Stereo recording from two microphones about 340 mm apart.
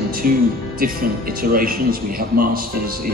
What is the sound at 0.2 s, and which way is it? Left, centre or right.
Speech, right.